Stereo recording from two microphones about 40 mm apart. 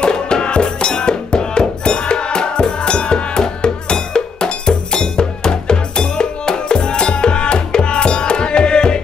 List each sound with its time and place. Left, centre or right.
0.0 s music: left